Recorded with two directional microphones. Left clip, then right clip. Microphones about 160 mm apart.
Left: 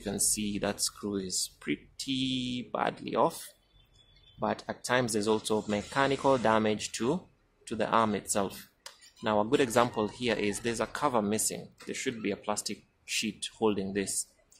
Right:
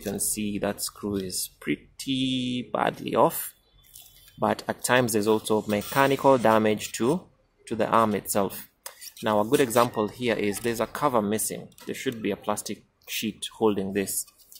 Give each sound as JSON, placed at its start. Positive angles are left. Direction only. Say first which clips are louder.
{"t": 0.4, "sound": "speech", "louder": "right 3 dB", "side_deg": -20}